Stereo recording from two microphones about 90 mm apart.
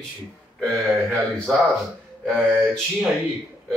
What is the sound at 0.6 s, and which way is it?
A man's voice, centre (ahead or behind).